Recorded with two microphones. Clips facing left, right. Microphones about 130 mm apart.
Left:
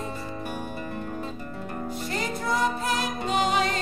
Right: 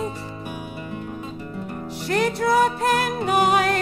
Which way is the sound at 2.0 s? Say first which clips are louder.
Right 10 dB; 70° right (ahead or behind).